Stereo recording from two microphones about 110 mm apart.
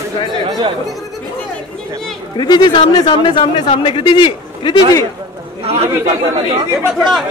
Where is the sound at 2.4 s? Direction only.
40° left (ahead or behind).